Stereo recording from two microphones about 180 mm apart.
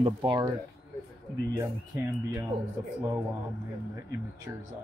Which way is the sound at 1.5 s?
20° right (ahead or behind).